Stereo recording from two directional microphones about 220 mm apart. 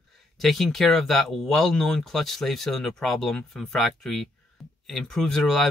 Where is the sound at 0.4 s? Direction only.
Centre (ahead or behind).